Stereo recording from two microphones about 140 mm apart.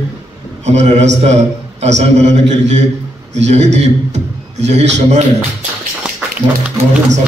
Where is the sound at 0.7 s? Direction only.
55° right (ahead or behind).